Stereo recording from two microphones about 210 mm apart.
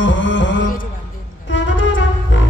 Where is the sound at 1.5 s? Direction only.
65° left (ahead or behind).